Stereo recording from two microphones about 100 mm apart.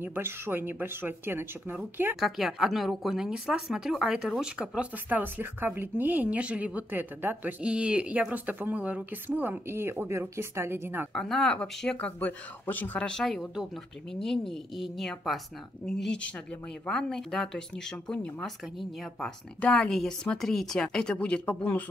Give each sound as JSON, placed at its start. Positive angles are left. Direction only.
{"t": 0.0, "sound": "speech", "side_deg": -20}
{"t": 2.1, "sound": "a woman's voice", "side_deg": -5}
{"t": 11.1, "sound": "a woman's voice", "side_deg": 5}